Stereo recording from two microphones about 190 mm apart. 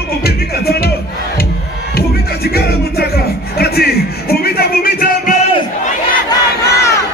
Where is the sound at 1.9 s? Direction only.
55° left (ahead or behind).